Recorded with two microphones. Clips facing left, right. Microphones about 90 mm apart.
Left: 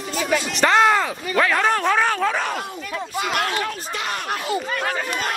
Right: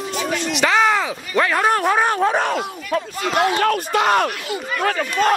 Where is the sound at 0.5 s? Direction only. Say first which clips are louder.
Even; centre (ahead or behind); by 2.4 s 20° right (ahead or behind).